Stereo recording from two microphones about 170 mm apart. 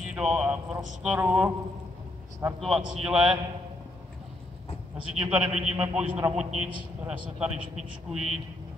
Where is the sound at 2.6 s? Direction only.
Centre (ahead or behind).